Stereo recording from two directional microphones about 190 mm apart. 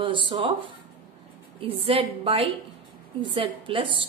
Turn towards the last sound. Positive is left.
turn(degrees=-25)  # may be behind; listen again after turning